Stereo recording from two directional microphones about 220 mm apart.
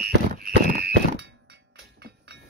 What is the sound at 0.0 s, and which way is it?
Thunk, 45° right (ahead or behind).